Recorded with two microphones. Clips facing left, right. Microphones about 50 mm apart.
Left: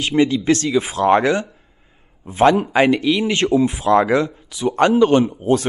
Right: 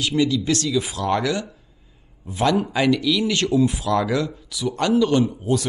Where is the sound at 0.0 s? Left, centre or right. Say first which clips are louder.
Left 4 dB; left.